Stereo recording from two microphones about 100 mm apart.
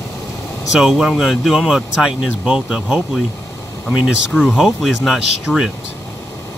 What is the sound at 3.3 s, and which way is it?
Vehicle, 30° left (ahead or behind).